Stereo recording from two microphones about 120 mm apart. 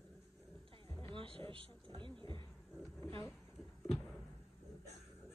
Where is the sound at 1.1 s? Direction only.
45° right (ahead or behind).